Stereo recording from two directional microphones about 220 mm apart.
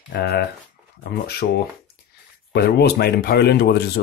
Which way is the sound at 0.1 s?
45° left (ahead or behind).